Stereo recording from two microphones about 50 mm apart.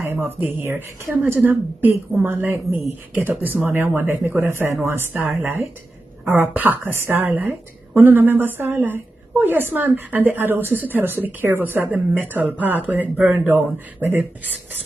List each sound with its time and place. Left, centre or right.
0.0 s a sound: right
0.4 s a woman's voice: right
1.1 s a woman's voice: right
3.2 s a woman's voice: right
3.6 s a woman's voice: right
4.6 s a woman's voice: right
6.2 s a woman's voice: right